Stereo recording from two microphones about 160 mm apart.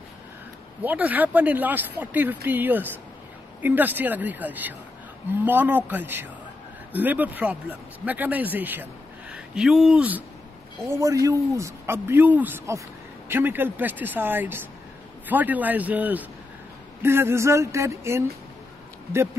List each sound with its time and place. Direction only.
0.8 s speech: 10° right (ahead or behind)
10.9 s a man's voice: 20° right (ahead or behind)